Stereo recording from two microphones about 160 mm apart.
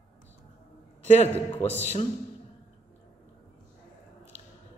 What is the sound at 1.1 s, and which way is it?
Speech, 45° left (ahead or behind).